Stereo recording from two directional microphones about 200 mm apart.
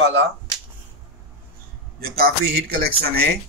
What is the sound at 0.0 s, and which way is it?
Speech, 65° right (ahead or behind).